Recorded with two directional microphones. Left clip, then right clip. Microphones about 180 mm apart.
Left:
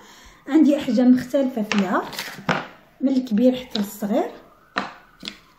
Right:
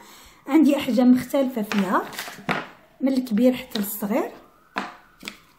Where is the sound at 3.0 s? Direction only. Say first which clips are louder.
Left 1 dB; 45° right (ahead or behind).